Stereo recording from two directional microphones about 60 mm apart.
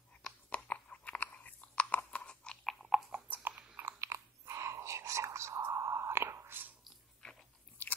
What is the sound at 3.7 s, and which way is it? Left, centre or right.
Chewing, right.